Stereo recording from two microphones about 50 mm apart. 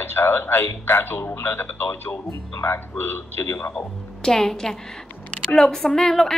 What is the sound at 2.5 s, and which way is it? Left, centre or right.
Speech, left.